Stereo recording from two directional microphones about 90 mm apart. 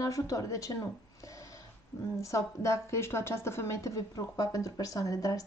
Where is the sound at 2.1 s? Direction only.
35° left (ahead or behind).